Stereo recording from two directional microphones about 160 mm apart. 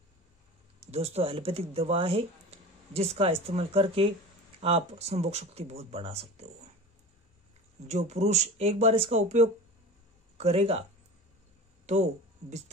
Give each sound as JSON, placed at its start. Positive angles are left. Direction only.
{"t": 0.9, "sound": "speech", "side_deg": -40}
{"t": 7.8, "sound": "speech", "side_deg": -45}